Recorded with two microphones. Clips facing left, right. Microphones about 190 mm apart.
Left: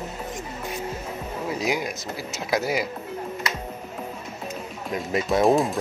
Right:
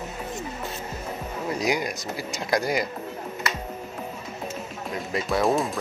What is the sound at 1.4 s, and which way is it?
Speech, 5° left (ahead or behind).